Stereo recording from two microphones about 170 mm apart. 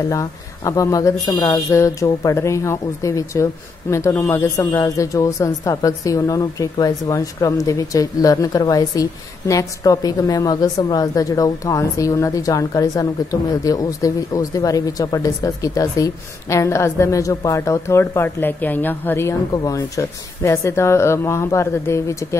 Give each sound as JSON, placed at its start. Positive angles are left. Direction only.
{"t": 0.1, "sound": "a woman's voice", "side_deg": 20}